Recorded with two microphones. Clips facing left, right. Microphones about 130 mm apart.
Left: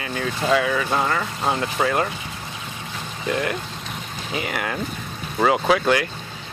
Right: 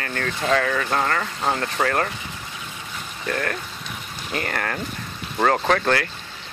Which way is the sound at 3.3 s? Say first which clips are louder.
Left 2 dB; 15° left (ahead or behind).